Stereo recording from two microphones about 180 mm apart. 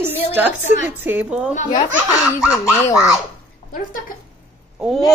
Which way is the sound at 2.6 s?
15° left (ahead or behind).